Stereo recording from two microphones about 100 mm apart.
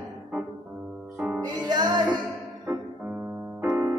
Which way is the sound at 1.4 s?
45° right (ahead or behind).